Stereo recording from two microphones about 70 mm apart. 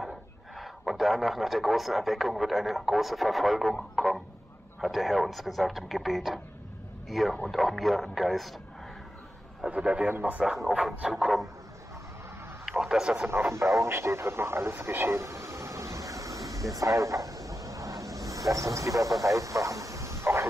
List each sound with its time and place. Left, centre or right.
0.6 s a man's voice: centre
9.7 s a man's voice: centre
10.4 s a man's voice: centre
12.6 s a man's voice: centre
13.3 s speech: right
13.7 s radio: right